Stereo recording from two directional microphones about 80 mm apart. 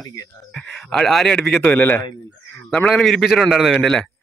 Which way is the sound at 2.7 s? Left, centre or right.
Centre.